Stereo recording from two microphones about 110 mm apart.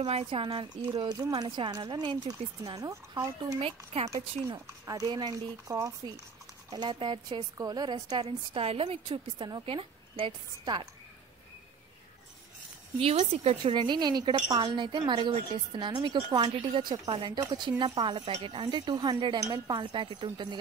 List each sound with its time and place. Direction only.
0.0 s speech: 60° right (ahead or behind)
1.0 s speech: 35° right (ahead or behind)
2.8 s speech: 30° right (ahead or behind)
3.5 s speech: 65° right (ahead or behind)
4.1 s speech: 30° right (ahead or behind)
6.7 s speech: 40° right (ahead or behind)
7.5 s speech: 35° right (ahead or behind)
13.0 s a woman's voice: 80° right
13.7 s speech: 45° right (ahead or behind)
18.3 s speech: 55° right (ahead or behind)